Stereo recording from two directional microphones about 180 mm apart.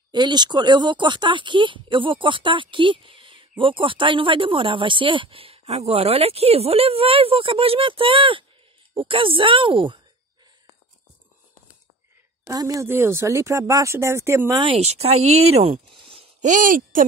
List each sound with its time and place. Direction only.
0.1 s speech: 25° right (ahead or behind)
12.4 s speech: 20° right (ahead or behind)
14.6 s speech: 35° right (ahead or behind)
16.1 s a sound: 35° right (ahead or behind)